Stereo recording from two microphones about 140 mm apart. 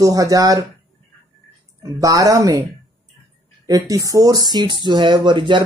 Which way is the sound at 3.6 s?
25° right (ahead or behind).